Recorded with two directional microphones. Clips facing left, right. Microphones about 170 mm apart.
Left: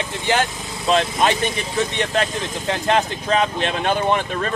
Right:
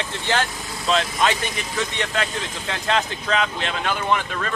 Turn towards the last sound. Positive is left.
turn(degrees=30)  # may be behind; listen again after turning